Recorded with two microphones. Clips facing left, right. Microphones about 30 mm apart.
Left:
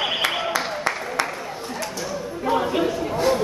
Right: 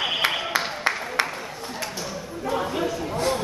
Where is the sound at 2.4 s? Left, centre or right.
Left.